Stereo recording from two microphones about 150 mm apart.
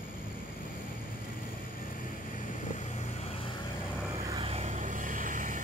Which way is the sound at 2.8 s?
50° left (ahead or behind).